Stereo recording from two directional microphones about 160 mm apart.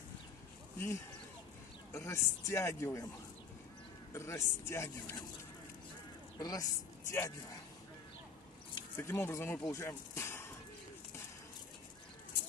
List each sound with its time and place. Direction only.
0.7 s a man's voice: 15° left (ahead or behind)
4.1 s speech: 15° left (ahead or behind)
6.3 s a woman's voice: 25° left (ahead or behind)
8.9 s speech: 15° left (ahead or behind)